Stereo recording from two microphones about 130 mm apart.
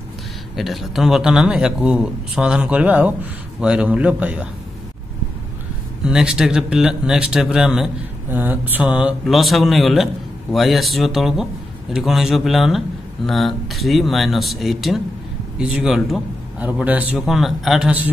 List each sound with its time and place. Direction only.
0.6 s a man's voice: centre (ahead or behind)
6.0 s a man's voice: 5° right (ahead or behind)